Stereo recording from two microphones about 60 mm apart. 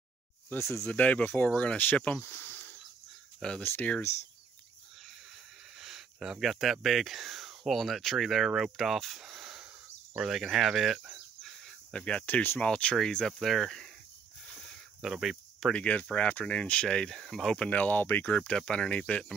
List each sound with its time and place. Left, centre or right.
0.6 s speech: left
0.8 s speech: left
3.3 s speech: centre
5.8 s speech: centre
11.1 s a sound: centre
11.9 s speech: centre
12.3 s speech: left
12.5 s speech: centre
14.5 s a sound: centre
15.7 s speech: left
16.8 s speech: centre
17.6 s speech: left